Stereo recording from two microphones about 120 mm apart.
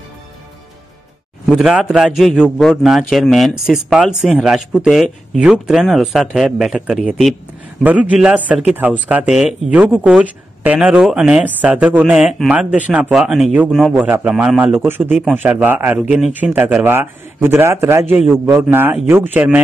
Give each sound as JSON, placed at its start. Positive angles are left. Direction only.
{"t": 1.4, "sound": "speech", "side_deg": -5}
{"t": 13.9, "sound": "speech", "side_deg": -15}
{"t": 14.9, "sound": "speech", "side_deg": -15}
{"t": 16.0, "sound": "speech", "side_deg": 0}
{"t": 16.3, "sound": "speech", "side_deg": -15}